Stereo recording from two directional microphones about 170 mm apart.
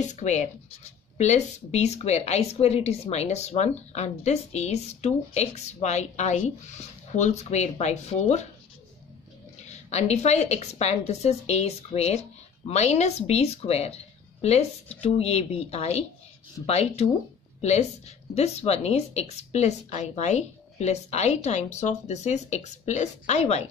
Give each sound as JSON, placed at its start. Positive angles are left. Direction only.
{"t": 0.1, "sound": "speech", "side_deg": 45}
{"t": 9.6, "sound": "speech", "side_deg": 40}